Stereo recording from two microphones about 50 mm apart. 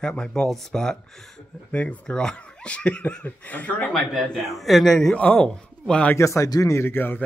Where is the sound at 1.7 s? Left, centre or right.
Left.